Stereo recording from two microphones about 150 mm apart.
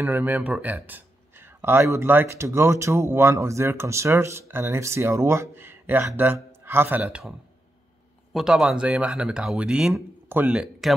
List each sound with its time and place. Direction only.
0.0 s speech: 10° right (ahead or behind)